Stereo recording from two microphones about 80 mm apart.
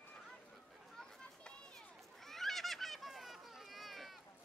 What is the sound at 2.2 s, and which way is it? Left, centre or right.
Children playing, centre.